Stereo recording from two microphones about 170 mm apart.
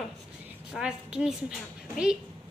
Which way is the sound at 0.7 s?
5° right (ahead or behind).